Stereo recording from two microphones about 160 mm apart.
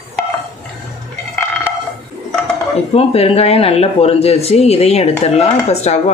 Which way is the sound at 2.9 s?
40° left (ahead or behind).